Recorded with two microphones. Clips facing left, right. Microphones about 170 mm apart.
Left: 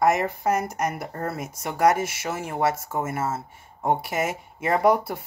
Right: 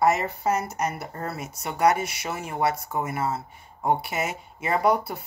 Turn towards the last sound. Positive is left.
turn(degrees=50)  # may be behind; listen again after turning